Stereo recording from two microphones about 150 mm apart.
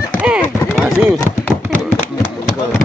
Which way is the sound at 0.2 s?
10° right (ahead or behind).